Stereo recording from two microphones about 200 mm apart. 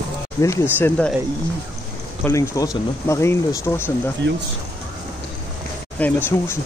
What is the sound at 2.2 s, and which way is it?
Speech, 15° left (ahead or behind).